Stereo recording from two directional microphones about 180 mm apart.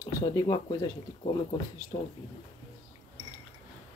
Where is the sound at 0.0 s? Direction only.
20° left (ahead or behind).